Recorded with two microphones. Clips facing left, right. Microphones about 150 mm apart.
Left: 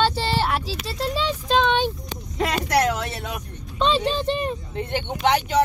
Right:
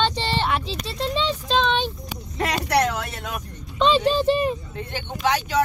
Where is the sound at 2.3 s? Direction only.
5° left (ahead or behind).